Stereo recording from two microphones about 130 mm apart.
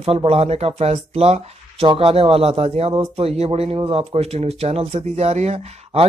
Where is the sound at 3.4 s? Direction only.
50° right (ahead or behind).